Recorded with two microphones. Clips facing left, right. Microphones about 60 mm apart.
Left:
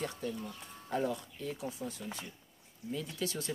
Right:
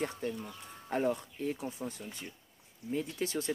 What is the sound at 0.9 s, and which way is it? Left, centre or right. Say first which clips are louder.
Speech: right 3 dB; right.